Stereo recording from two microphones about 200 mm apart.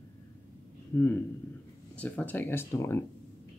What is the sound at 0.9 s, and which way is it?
Speech, 10° left (ahead or behind).